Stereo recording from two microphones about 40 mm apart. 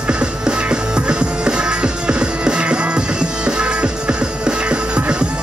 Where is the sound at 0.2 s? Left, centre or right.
Right.